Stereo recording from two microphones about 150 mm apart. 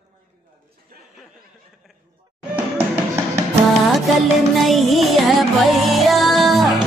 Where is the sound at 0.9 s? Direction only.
80° right.